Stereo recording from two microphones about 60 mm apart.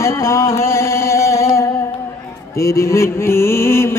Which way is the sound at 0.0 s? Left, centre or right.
Left.